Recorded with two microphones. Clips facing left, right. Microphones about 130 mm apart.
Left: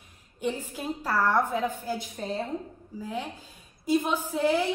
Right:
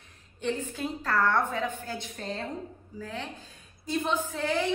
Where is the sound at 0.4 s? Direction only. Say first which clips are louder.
Even; 10° left (ahead or behind).